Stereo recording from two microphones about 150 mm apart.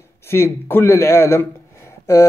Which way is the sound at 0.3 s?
15° left (ahead or behind).